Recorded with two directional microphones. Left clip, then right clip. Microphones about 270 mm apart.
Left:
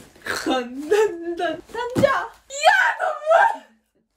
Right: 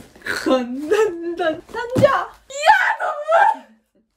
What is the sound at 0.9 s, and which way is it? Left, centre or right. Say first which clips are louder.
Speech: right 1 dB; right.